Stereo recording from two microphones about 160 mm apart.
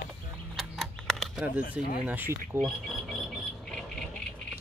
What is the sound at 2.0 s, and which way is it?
Speech, 10° right (ahead or behind).